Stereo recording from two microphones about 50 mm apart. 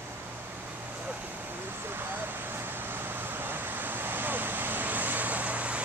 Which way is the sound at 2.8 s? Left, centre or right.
Right.